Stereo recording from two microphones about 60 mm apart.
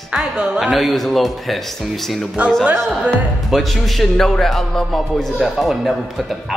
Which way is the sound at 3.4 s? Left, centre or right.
Centre.